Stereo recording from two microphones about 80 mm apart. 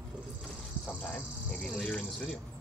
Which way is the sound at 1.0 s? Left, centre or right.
Centre.